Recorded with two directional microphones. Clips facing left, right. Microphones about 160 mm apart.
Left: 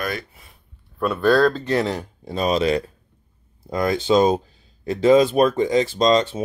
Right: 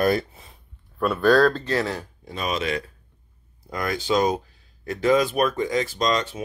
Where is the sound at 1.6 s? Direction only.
20° left (ahead or behind).